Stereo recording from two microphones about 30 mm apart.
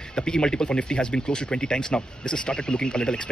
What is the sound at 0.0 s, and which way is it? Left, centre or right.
Speech, left.